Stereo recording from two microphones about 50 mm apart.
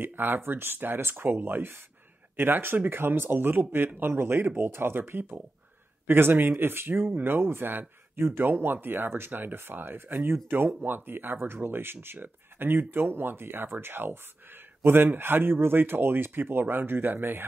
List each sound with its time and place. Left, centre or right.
0.0 s a man's voice: right